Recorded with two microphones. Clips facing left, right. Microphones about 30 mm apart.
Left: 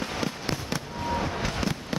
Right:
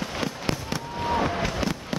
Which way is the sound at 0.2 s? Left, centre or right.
Centre.